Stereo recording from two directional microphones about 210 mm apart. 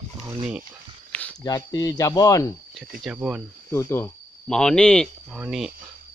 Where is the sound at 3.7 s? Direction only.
10° left (ahead or behind).